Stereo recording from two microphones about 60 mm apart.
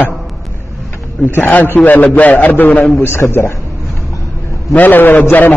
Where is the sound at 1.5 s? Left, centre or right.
Left.